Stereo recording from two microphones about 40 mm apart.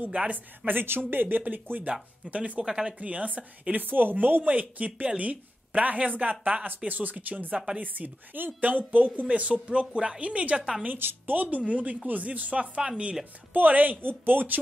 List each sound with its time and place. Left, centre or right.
0.1 s a woman's voice: right
0.7 s a woman's voice: right
2.3 s a woman's voice: right
4.5 s a woman's voice: right
9.3 s a woman's voice: right
11.0 s speech: right
11.4 s speech: right
12.8 s a woman's voice: right
13.5 s a woman's voice: right
14.0 s speech: right